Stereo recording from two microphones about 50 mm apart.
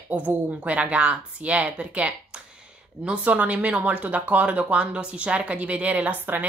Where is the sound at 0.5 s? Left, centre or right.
Right.